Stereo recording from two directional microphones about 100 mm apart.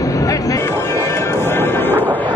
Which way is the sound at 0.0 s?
35° left (ahead or behind).